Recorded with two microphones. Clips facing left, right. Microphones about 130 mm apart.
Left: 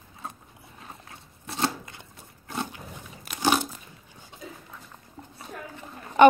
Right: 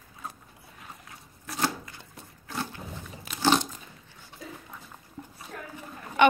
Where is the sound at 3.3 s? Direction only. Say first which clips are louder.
Even; 10° left (ahead or behind).